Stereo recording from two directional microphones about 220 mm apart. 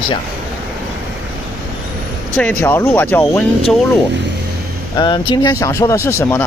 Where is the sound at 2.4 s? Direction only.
5° left (ahead or behind).